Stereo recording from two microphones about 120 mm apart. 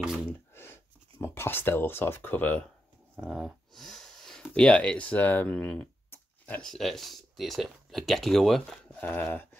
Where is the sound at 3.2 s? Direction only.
Centre (ahead or behind).